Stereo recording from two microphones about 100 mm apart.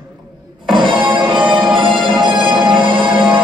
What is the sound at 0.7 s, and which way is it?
Music, 55° right (ahead or behind).